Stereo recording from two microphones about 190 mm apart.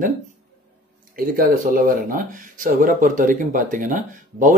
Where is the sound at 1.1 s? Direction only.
50° right (ahead or behind).